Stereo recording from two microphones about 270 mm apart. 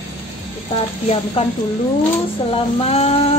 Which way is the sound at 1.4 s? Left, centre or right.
Left.